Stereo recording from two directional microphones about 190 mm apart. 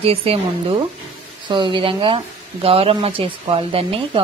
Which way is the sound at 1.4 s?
25° right (ahead or behind).